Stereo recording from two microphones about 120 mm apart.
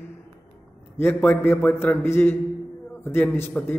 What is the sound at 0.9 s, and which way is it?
A man's voice, 15° left (ahead or behind).